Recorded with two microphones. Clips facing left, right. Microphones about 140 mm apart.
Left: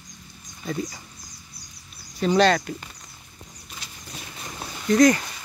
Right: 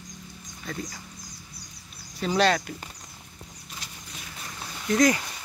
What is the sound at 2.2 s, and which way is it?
Speech, 5° right (ahead or behind).